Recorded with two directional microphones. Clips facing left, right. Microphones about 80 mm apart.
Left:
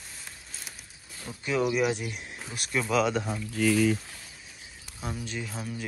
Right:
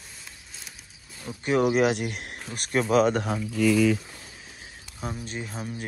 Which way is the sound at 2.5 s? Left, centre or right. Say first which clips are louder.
Right 5 dB; right.